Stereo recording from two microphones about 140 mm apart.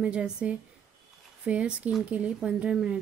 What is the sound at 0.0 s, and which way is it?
Speech, 10° right (ahead or behind).